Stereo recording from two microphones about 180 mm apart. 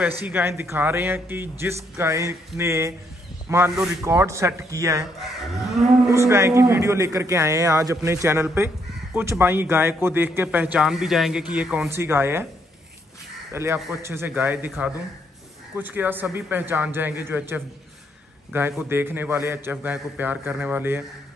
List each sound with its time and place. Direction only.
0.2 s a man's voice: 10° right (ahead or behind)
5.6 s cattle: centre (ahead or behind)
6.0 s a man's voice: 15° right (ahead or behind)
13.5 s a man's voice: 15° right (ahead or behind)